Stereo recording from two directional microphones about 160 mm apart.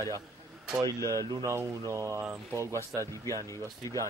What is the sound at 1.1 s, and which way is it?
Speech, 20° right (ahead or behind).